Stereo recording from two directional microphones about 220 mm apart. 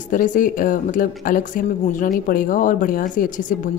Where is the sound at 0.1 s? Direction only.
35° left (ahead or behind).